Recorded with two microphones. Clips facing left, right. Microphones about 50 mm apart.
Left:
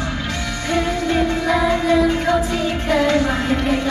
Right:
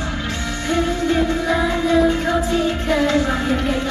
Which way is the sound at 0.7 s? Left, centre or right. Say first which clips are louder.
Even; left.